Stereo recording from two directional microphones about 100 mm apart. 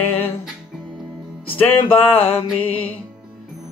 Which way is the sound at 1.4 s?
20° left (ahead or behind).